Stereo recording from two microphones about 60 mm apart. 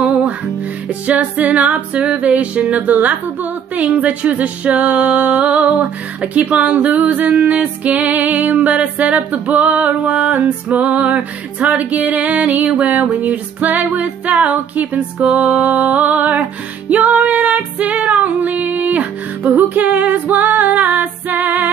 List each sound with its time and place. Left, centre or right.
1.0 s music: right